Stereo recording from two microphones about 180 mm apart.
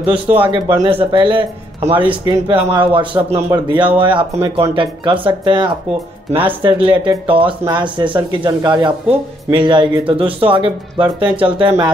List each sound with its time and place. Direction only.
0.1 s speech: 30° right (ahead or behind)